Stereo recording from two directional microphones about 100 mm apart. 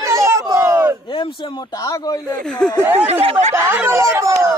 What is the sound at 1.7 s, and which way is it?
Speech, 35° left (ahead or behind).